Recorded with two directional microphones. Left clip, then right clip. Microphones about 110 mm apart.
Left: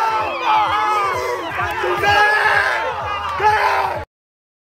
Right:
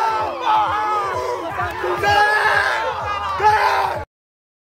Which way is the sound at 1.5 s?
20° left (ahead or behind).